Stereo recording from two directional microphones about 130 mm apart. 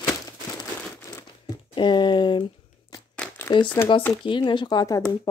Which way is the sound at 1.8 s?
35° left (ahead or behind).